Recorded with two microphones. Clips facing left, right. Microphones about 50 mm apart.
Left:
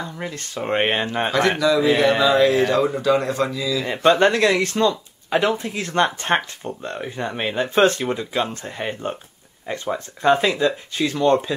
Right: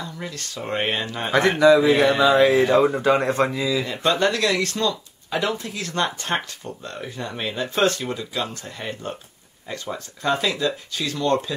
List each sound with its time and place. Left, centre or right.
0.0 s speech: left
1.6 s speech: right
3.8 s speech: left